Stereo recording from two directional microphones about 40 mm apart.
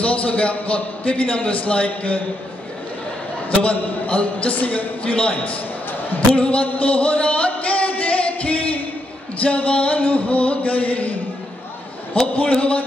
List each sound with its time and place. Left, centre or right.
0.0 s a man's voice: left
4.1 s a man's voice: left
5.0 s a man's voice: left
5.3 s a man's voice: left
6.3 s a man's voice: left
6.8 s music: left
9.4 s a man's voice: left
12.4 s a man's voice: left